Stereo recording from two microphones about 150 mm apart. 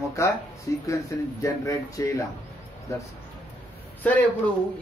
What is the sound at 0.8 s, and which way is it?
Speech, 20° left (ahead or behind).